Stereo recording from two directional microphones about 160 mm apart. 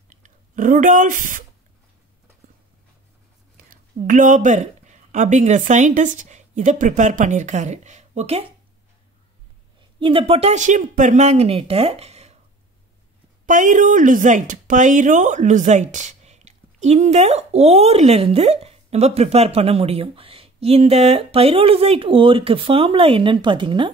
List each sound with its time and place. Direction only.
0.1 s a sound: 55° right (ahead or behind)
3.5 s a woman's voice: 55° right (ahead or behind); by 8.5 s 40° right (ahead or behind)
9.8 s speech: 30° right (ahead or behind)
13.5 s speech: 55° right (ahead or behind); by 23.9 s 30° right (ahead or behind)